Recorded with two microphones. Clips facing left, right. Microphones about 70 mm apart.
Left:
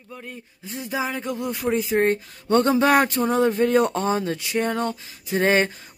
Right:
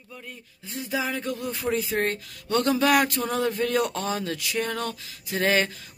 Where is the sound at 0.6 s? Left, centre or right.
Left.